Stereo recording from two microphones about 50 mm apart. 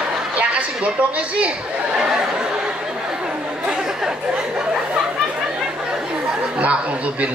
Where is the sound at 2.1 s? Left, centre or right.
Centre.